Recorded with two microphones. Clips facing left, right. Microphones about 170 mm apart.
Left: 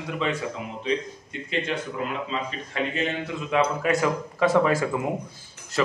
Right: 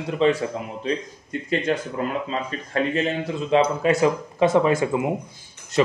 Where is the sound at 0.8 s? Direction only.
45° right (ahead or behind).